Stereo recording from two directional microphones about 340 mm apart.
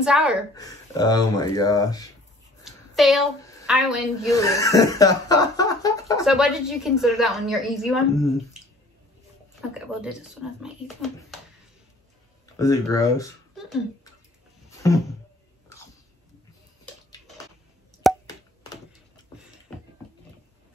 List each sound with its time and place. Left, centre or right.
0.0 s a woman's voice: centre
0.6 s speech: centre
2.6 s a sound: centre
4.3 s speech: centre
6.2 s a woman's voice: centre
9.6 s a woman's voice: centre
12.5 s speech: centre
14.8 s speech: centre
18.0 s a sound: centre